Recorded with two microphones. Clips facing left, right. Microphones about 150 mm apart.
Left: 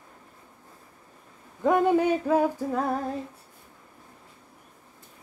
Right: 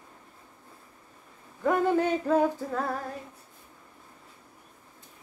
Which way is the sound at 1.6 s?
15° left (ahead or behind).